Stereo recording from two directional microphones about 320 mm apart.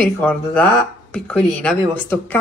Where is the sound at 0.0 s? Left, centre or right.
Centre.